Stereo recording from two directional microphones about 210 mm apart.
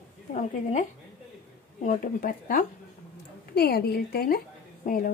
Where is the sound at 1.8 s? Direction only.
40° left (ahead or behind).